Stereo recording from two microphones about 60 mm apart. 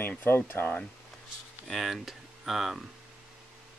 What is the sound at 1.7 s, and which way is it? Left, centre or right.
Speech, centre.